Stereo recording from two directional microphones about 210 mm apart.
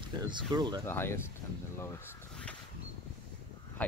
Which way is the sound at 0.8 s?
10° left (ahead or behind).